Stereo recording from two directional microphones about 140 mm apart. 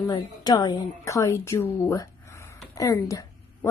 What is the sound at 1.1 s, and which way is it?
A woman's voice, 20° left (ahead or behind).